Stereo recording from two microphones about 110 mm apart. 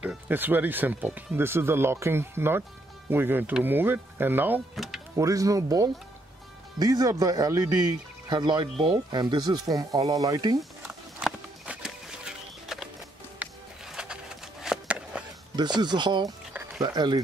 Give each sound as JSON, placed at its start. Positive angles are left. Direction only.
{"t": 0.3, "sound": "speech", "side_deg": -15}
{"t": 4.7, "sound": "music", "side_deg": 0}
{"t": 5.1, "sound": "speech", "side_deg": -30}
{"t": 10.6, "sound": "a sound", "side_deg": 0}
{"t": 13.4, "sound": "music", "side_deg": -5}
{"t": 15.5, "sound": "speech", "side_deg": -40}